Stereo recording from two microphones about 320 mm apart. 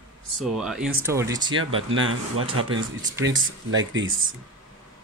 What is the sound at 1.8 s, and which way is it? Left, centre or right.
Speech, right.